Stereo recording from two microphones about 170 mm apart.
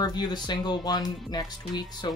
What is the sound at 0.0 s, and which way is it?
Speech, 25° left (ahead or behind).